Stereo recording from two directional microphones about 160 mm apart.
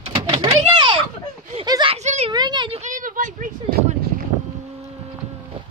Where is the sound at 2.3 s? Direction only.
25° right (ahead or behind).